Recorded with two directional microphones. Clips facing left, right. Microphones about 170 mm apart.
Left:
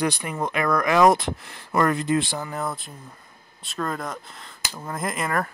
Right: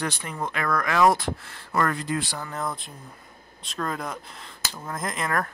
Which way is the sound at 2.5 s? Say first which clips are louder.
Left 2 dB; 5° left (ahead or behind).